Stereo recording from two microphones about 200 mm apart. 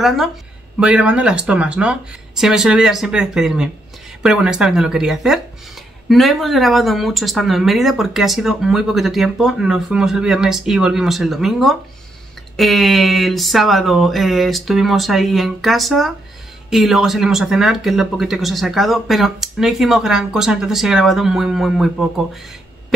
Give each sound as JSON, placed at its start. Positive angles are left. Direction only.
{"t": 0.0, "sound": "speech", "side_deg": 0}